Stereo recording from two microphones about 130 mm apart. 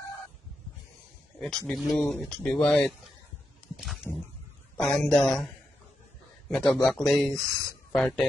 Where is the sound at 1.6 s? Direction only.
Centre (ahead or behind).